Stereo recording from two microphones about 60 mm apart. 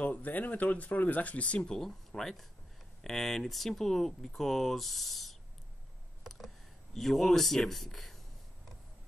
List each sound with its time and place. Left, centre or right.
0.0 s speech: left
1.8 s speech: centre